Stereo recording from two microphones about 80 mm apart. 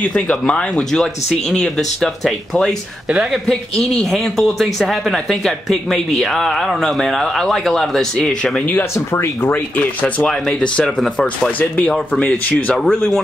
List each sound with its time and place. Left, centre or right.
0.0 s speech: centre
3.4 s speech: centre
8.9 s speech: left
9.5 s speech: left
10.2 s speech: centre
11.7 s speech: centre
12.7 s speech: centre